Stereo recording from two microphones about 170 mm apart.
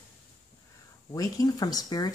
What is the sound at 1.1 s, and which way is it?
Speech, 20° left (ahead or behind).